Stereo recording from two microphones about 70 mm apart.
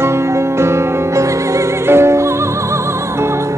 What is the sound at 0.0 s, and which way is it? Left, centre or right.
Music, right.